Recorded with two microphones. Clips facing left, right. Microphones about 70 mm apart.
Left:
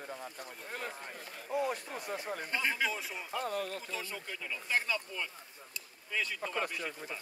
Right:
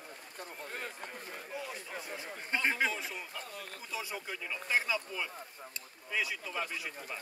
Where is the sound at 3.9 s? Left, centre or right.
Centre.